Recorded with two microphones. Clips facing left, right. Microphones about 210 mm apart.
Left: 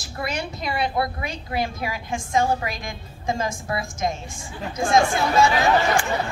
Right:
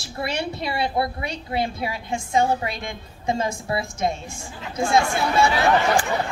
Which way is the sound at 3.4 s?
30° right (ahead or behind).